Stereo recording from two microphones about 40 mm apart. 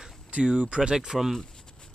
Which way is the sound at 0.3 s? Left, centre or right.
Right.